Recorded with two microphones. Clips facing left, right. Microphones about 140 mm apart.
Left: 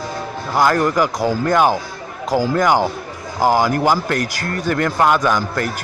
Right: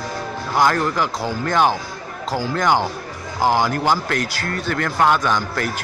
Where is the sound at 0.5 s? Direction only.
5° left (ahead or behind).